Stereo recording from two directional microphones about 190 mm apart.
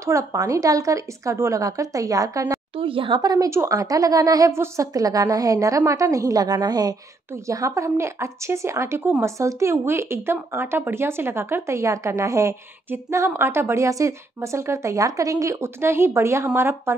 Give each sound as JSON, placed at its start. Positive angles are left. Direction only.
{"t": 0.0, "sound": "speech", "side_deg": -15}